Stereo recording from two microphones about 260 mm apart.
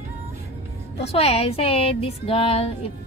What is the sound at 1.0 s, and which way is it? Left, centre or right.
Speech, left.